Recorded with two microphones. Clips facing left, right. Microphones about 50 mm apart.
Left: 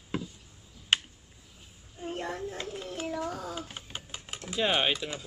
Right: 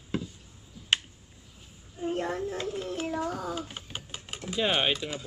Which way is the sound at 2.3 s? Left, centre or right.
Right.